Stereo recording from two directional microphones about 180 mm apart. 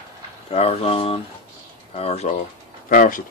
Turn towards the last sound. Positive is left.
turn(degrees=50)  # may be behind; listen again after turning